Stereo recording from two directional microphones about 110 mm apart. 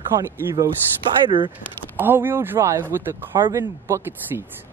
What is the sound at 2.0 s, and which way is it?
Speech, 20° right (ahead or behind).